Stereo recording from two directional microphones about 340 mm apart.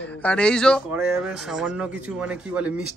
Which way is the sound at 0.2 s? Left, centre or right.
Centre.